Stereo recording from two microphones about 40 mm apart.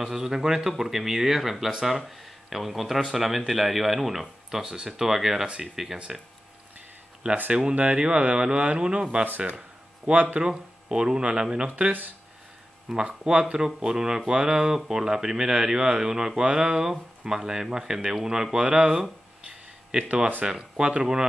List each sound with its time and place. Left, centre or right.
0.0 s speech: centre
7.2 s speech: right
10.4 s speech: centre
12.9 s speech: right